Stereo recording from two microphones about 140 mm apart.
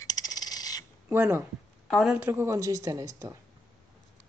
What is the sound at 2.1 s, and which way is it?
Speech, 15° right (ahead or behind).